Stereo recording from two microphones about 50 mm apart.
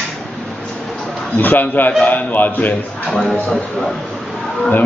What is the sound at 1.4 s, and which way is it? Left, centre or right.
A man's voice, left.